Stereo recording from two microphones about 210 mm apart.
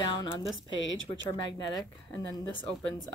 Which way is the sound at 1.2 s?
15° left (ahead or behind).